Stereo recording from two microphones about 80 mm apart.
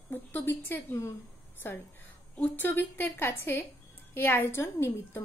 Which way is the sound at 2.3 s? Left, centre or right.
Left.